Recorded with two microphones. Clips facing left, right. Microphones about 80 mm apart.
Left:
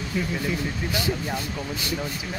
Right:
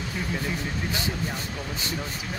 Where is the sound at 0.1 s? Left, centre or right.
Right.